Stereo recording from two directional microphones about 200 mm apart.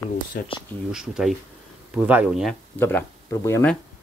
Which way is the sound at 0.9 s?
5° right (ahead or behind).